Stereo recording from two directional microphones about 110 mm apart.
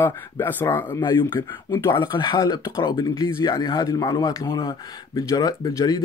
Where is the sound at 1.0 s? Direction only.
45° left (ahead or behind).